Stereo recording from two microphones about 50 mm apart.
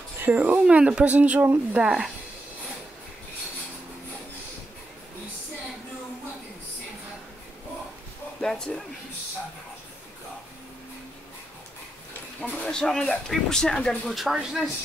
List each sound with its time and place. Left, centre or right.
0.2 s speech: right
8.4 s speech: centre
12.4 s speech: centre
14.0 s speech: centre